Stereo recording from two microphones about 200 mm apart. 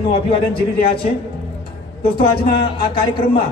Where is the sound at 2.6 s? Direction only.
25° left (ahead or behind).